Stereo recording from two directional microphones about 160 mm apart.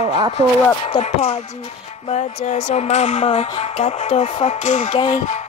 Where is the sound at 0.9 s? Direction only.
45° left (ahead or behind).